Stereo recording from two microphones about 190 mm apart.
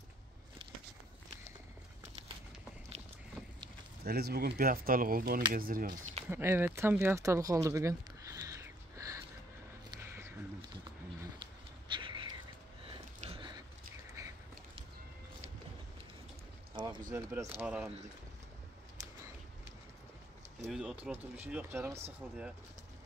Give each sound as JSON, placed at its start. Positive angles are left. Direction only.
{"t": 4.0, "sound": "speech", "side_deg": -55}
{"t": 6.2, "sound": "speech", "side_deg": -10}
{"t": 10.0, "sound": "a sound", "side_deg": -10}
{"t": 11.9, "sound": "a sound", "side_deg": -25}
{"t": 12.8, "sound": "sniff", "side_deg": -30}
{"t": 16.7, "sound": "boat", "side_deg": -25}
{"t": 17.1, "sound": "speech", "side_deg": -15}
{"t": 20.6, "sound": "speech", "side_deg": -5}